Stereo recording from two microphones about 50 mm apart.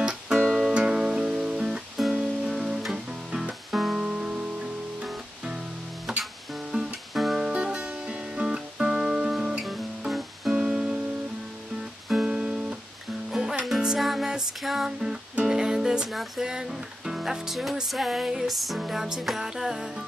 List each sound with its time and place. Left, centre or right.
0.0 s music: centre
6.1 s music: centre
6.7 s music: right
7.3 s guitar: centre
10.5 s music: centre
12.1 s music: centre
13.9 s music: centre
14.9 s music: centre
16.1 s music: centre
16.4 s music: centre